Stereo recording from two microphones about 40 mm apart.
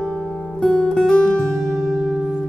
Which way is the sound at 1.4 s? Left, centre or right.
Centre.